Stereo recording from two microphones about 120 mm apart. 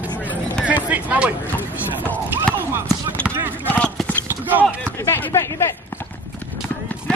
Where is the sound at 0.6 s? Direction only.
10° right (ahead or behind).